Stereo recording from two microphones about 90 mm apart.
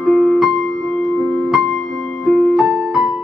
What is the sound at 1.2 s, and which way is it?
Music, 15° left (ahead or behind).